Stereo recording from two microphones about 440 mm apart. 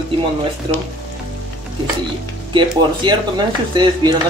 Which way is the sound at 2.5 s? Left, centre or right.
Centre.